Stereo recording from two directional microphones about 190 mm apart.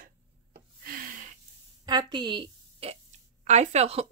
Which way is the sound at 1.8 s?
20° right (ahead or behind).